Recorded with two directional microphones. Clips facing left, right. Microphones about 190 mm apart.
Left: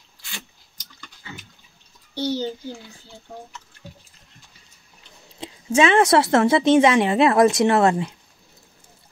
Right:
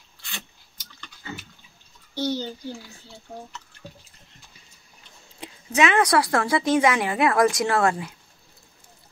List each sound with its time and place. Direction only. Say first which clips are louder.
2.1 s a child's voice: left 2 dB; 10° left (ahead or behind)
5.4 s a woman's voice: left 4 dB; 25° left (ahead or behind)